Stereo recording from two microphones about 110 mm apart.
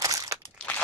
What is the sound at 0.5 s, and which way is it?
Crumpling, 15° left (ahead or behind).